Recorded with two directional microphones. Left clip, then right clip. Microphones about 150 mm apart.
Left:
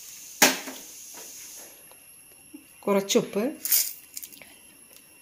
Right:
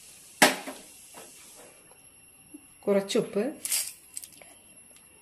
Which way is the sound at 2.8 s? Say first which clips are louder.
Left 2 dB; 30° left (ahead or behind).